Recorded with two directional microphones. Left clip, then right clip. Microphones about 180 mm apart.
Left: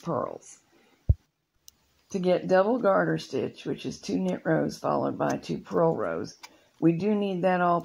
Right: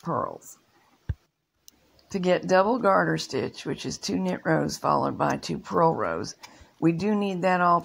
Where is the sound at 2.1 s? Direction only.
20° right (ahead or behind).